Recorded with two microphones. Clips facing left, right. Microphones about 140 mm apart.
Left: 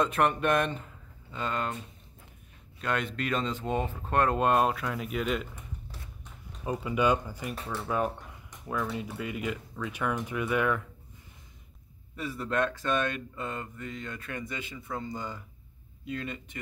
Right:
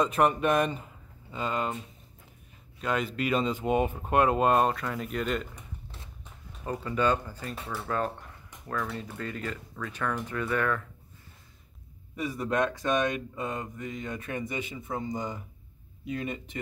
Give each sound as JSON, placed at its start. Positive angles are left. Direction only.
{"t": 0.0, "sound": "speech", "side_deg": 0}
{"t": 2.8, "sound": "speech", "side_deg": 0}
{"t": 6.6, "sound": "speech", "side_deg": 10}
{"t": 12.2, "sound": "speech", "side_deg": -15}